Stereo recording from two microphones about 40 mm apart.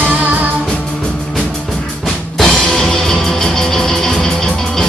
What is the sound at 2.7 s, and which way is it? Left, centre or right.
Music, centre.